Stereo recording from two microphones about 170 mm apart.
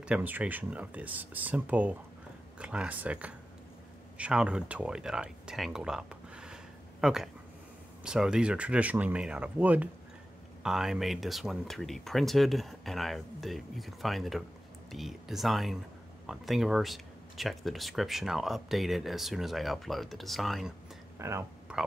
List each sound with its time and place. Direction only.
0.0 s speech: 10° right (ahead or behind)
21.2 s speech: 15° right (ahead or behind)